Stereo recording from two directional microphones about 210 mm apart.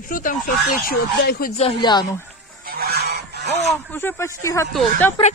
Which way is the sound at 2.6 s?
45° right (ahead or behind).